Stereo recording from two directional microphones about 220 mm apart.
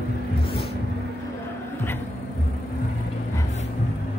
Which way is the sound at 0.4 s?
25° left (ahead or behind).